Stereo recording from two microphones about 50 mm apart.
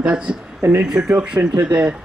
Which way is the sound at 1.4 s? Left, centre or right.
Right.